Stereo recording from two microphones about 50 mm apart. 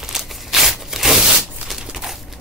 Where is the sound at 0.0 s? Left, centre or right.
Centre.